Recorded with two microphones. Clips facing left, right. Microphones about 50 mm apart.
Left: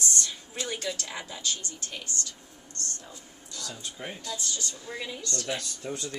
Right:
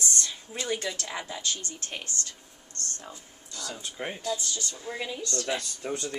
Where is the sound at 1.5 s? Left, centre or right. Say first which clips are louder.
Right 2 dB; right.